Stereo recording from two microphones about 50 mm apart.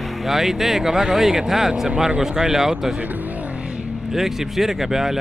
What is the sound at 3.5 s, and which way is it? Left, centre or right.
Vehicle, centre.